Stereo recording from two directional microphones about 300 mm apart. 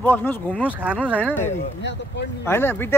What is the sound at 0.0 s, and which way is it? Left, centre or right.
Speech, centre.